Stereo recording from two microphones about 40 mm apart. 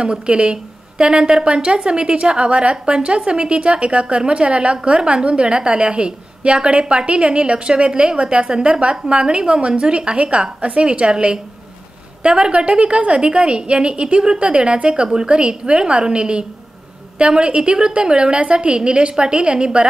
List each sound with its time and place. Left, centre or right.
0.0 s a woman's voice: right